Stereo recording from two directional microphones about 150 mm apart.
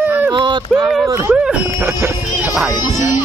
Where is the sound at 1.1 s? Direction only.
15° right (ahead or behind).